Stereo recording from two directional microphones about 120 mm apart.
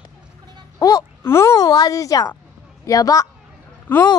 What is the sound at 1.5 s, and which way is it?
A woman's voice, 35° left (ahead or behind).